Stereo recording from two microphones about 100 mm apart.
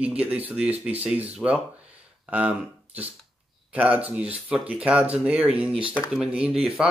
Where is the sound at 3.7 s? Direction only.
15° right (ahead or behind).